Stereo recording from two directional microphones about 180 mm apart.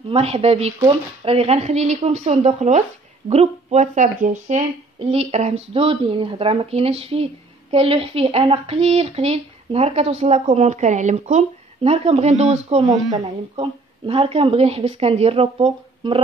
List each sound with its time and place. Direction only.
0.1 s speech: 35° right (ahead or behind)